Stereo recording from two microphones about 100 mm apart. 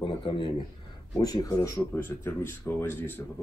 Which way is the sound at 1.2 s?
40° left (ahead or behind).